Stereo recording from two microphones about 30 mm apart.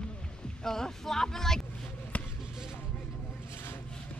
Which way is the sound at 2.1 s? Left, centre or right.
Left.